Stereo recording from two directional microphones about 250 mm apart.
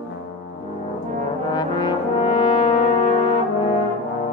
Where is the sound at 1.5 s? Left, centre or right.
Centre.